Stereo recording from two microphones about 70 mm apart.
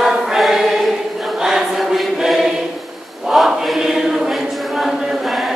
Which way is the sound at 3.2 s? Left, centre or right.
Centre.